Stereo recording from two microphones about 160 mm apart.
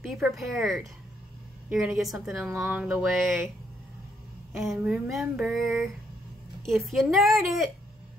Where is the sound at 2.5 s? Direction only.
10° right (ahead or behind).